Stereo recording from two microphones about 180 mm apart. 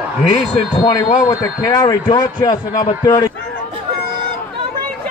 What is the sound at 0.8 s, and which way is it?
A man's voice, 20° left (ahead or behind).